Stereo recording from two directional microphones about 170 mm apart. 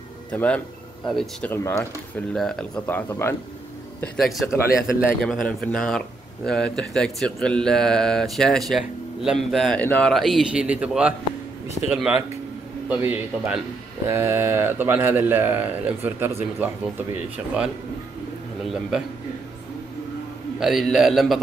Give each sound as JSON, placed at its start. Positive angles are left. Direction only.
{"t": 0.3, "sound": "speech", "side_deg": 5}
{"t": 1.5, "sound": "speech", "side_deg": 15}
{"t": 2.3, "sound": "speech", "side_deg": 0}
{"t": 4.0, "sound": "a man's voice", "side_deg": 0}
{"t": 20.5, "sound": "speech", "side_deg": 0}